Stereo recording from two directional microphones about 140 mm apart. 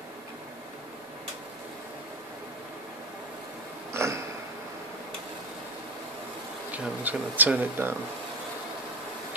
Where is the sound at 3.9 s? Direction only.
20° right (ahead or behind).